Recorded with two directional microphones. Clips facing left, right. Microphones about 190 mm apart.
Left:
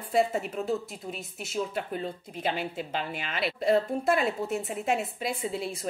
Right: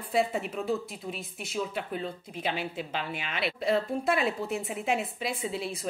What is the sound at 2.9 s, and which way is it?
Speech, 45° left (ahead or behind).